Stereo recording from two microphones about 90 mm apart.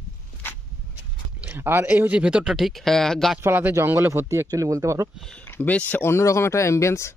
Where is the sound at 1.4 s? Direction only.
25° right (ahead or behind); by 3.3 s 5° left (ahead or behind).